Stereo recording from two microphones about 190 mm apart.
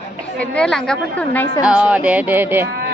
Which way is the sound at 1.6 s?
5° right (ahead or behind).